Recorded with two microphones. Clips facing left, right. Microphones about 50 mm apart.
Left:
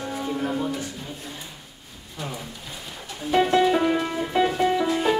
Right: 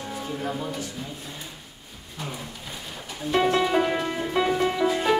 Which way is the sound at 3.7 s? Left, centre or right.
Centre.